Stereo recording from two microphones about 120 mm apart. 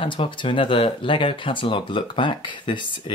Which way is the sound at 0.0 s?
45° left (ahead or behind).